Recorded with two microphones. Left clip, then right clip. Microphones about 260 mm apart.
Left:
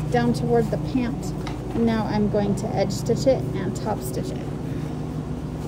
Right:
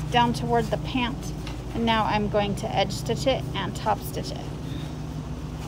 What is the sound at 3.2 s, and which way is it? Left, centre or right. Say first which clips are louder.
Speech: left 3 dB; right.